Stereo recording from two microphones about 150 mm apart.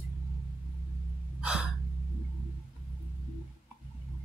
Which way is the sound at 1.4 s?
5° right (ahead or behind).